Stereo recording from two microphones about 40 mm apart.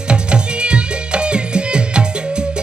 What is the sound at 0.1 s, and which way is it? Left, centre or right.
Music, right.